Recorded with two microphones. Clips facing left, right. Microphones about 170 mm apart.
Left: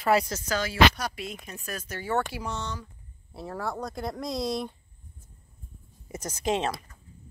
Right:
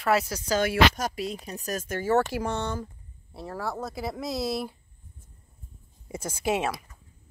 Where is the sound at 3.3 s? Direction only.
Centre (ahead or behind).